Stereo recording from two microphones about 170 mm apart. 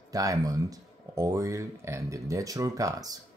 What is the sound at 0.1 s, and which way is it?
Speech, 20° right (ahead or behind).